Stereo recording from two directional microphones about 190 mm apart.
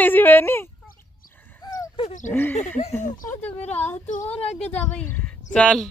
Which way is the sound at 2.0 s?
40° left (ahead or behind).